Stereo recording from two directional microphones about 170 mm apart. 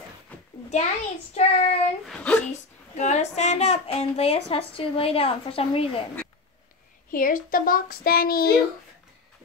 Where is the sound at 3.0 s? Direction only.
40° left (ahead or behind).